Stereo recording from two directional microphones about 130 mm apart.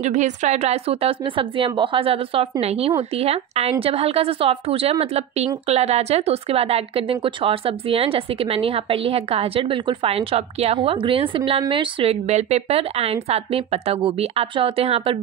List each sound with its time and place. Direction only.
0.0 s a woman's voice: 65° right (ahead or behind); by 15.1 s 45° right (ahead or behind)